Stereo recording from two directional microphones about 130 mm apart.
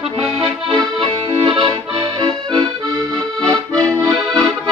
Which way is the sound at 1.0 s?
40° right (ahead or behind).